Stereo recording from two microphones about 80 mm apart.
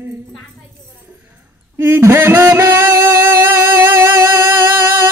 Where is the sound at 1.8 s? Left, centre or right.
Right.